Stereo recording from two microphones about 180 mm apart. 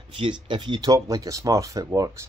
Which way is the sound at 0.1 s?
30° right (ahead or behind).